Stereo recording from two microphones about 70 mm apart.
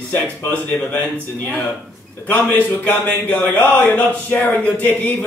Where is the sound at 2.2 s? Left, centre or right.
Left.